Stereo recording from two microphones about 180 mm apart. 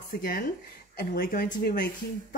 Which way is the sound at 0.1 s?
50° left (ahead or behind).